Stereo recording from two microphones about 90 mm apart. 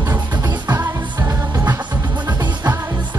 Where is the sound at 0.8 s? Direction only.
20° right (ahead or behind).